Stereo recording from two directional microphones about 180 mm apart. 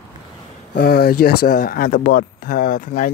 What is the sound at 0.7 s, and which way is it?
Speech, 60° left (ahead or behind).